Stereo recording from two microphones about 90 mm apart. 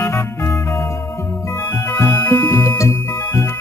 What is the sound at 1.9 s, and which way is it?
Music, 30° left (ahead or behind).